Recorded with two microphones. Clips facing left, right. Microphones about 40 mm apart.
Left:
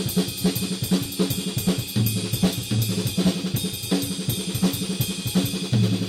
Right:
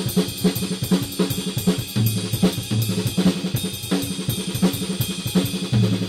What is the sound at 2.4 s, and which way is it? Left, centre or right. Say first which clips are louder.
Drum kit: right 3 dB; centre.